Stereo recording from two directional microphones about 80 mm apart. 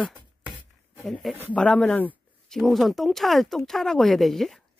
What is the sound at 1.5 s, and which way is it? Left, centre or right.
Speech, centre.